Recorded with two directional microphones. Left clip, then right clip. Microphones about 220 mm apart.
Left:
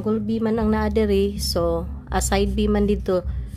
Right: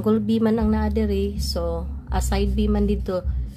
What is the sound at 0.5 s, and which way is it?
A woman's voice, 15° left (ahead or behind).